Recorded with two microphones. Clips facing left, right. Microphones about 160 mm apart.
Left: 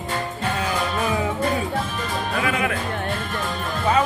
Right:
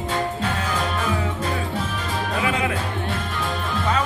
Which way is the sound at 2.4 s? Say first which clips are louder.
Even; 25° right (ahead or behind).